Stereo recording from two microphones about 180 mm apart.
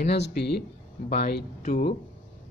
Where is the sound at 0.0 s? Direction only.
65° left (ahead or behind).